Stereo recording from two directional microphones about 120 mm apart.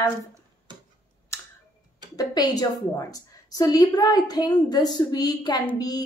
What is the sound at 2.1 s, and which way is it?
A woman's voice, 30° left (ahead or behind).